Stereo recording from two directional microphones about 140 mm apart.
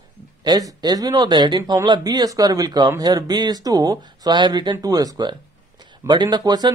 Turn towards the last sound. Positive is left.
turn(degrees=-30)  # may be behind; listen again after turning